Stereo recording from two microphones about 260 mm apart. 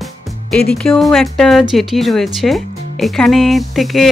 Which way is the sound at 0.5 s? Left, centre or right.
Centre.